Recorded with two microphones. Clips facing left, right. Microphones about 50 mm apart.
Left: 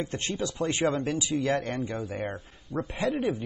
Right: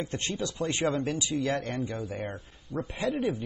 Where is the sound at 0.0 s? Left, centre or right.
Centre.